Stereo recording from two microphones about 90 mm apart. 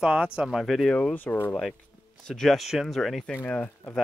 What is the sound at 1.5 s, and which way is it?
Speech, 5° left (ahead or behind).